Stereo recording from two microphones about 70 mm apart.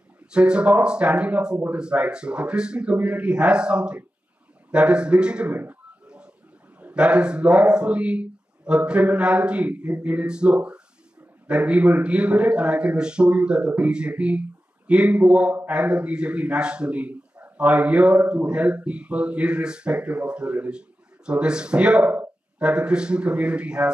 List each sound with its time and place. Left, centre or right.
0.3 s speech: centre
6.0 s a sound: centre
6.8 s a man's voice: centre